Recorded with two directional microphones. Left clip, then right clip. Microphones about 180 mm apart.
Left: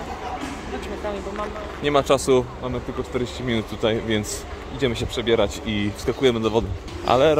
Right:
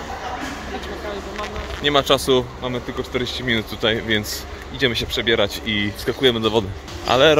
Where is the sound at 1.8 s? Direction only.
10° left (ahead or behind).